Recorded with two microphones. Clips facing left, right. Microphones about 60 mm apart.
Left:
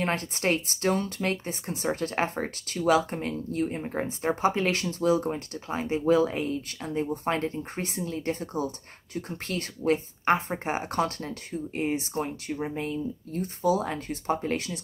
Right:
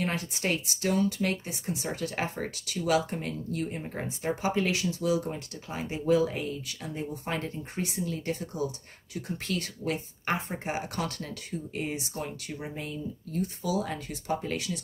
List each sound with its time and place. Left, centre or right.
0.0 s speech: left